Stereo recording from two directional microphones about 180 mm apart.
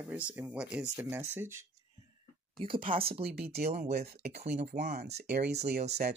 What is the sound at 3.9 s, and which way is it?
Speech, 60° right (ahead or behind).